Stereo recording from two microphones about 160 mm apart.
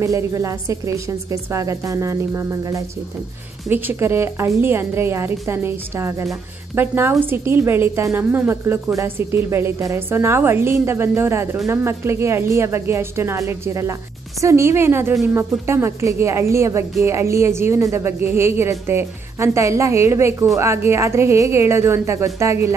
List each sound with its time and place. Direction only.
0.0 s a woman's voice: 20° right (ahead or behind)